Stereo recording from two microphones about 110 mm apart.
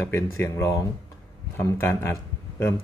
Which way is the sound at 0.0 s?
20° left (ahead or behind).